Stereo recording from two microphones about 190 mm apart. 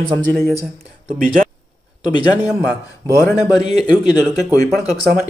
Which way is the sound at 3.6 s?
35° right (ahead or behind).